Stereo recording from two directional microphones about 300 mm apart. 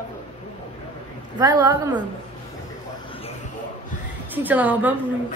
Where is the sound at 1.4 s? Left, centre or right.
Centre.